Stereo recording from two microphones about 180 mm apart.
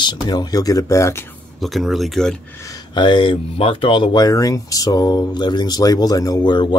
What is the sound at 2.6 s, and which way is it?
Speech, 20° left (ahead or behind).